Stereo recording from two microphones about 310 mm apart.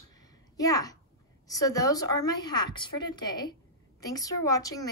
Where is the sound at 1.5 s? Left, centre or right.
Centre.